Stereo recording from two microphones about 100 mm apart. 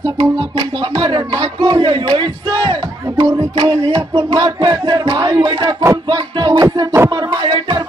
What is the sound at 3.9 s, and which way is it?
Music, 30° right (ahead or behind).